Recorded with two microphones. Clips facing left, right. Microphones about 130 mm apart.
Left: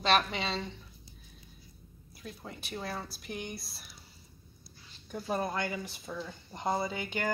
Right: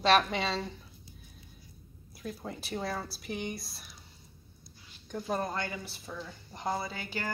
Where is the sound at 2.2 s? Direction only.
Centre (ahead or behind).